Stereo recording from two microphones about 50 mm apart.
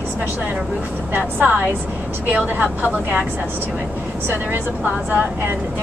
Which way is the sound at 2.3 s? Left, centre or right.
Right.